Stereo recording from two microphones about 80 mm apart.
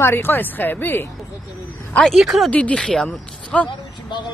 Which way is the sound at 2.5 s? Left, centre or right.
Centre.